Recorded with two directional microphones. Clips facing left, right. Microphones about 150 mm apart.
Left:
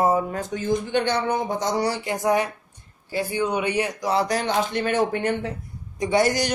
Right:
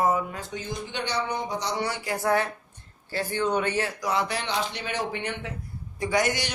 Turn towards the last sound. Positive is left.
turn(degrees=35)  # may be behind; listen again after turning